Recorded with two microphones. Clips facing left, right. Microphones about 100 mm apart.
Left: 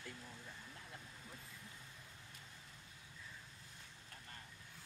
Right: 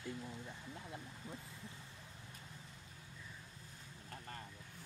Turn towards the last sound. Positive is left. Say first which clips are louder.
# right 7 dB
turn(degrees=-40)  # may be behind; listen again after turning